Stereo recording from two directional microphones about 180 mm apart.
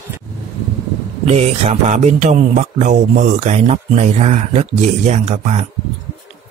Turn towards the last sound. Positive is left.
turn(degrees=-35)  # may be behind; listen again after turning